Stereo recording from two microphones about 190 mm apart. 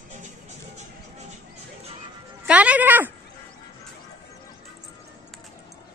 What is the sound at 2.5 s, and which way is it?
Speech, 5° right (ahead or behind).